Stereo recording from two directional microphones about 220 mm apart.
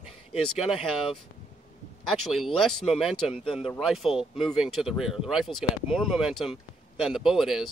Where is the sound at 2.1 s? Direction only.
5° right (ahead or behind).